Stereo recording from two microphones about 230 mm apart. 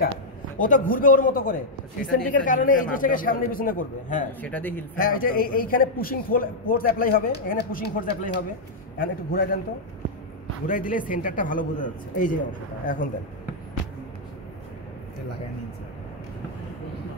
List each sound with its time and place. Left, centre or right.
0.6 s a man's voice: left
4.4 s a man's voice: centre
4.9 s a man's voice: left
10.7 s a man's voice: left